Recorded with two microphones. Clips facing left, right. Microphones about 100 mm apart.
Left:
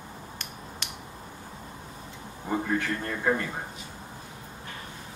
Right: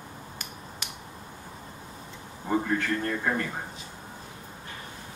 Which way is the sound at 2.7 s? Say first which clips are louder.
Right 1 dB; 15° left (ahead or behind).